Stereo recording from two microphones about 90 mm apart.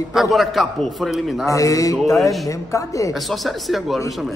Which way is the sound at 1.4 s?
40° left (ahead or behind).